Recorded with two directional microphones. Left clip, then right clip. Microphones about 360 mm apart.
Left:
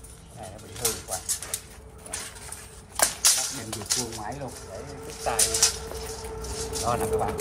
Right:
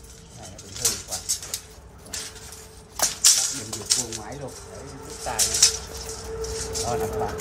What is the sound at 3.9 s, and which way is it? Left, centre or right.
Pigeon, left.